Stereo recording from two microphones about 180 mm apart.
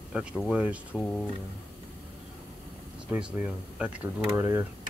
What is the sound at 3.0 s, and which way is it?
Speech, 5° right (ahead or behind).